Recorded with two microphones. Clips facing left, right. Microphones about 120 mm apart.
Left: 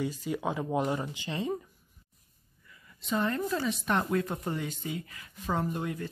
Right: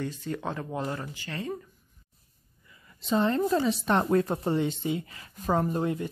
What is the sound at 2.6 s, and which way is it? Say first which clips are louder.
A woman's voice: right 2 dB; 30° right (ahead or behind).